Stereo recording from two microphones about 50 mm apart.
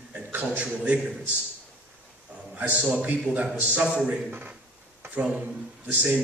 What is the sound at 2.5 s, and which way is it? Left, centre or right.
A man's voice, right.